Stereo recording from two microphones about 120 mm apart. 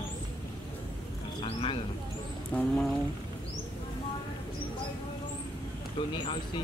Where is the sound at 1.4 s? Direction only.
50° left (ahead or behind).